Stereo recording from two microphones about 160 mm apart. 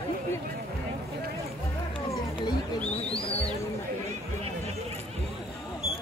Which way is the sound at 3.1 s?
35° left (ahead or behind).